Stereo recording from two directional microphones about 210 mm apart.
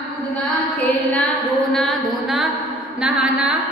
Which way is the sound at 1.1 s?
5° left (ahead or behind).